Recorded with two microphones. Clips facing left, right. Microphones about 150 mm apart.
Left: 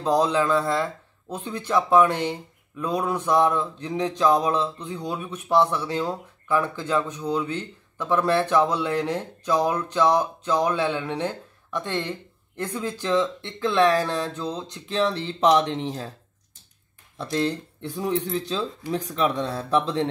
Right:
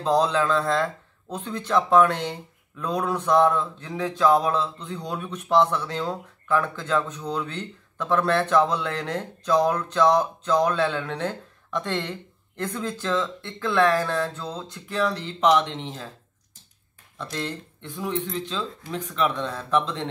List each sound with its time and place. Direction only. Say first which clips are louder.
0.0 s mantra: even; 10° left (ahead or behind); by 16.1 s 35° left (ahead or behind)
17.2 s speech: left 6 dB; 35° left (ahead or behind)